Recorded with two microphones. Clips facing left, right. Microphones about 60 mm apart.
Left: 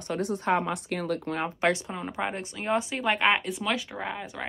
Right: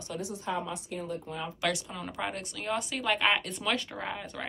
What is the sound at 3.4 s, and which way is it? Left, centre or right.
Speech, centre.